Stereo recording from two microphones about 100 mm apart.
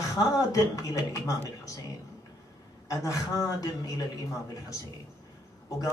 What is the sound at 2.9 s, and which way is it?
Speech, 35° left (ahead or behind).